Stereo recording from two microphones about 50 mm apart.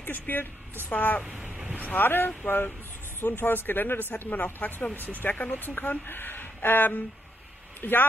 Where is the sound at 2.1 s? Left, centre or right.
Left.